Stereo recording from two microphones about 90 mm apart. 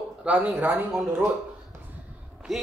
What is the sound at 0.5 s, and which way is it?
Speech, 25° right (ahead or behind).